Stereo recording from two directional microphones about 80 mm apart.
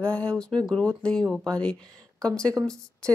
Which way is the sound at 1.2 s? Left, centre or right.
Centre.